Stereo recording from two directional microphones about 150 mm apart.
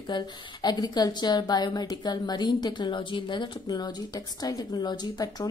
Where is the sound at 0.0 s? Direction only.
30° left (ahead or behind).